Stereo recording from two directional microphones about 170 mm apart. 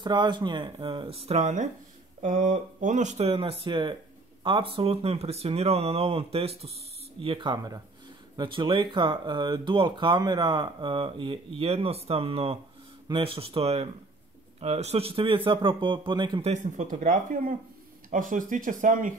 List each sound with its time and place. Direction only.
0.0 s speech: 25° right (ahead or behind)
16.4 s speech: 45° right (ahead or behind)